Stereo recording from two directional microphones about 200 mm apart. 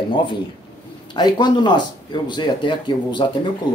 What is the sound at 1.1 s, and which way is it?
Speech, 20° left (ahead or behind).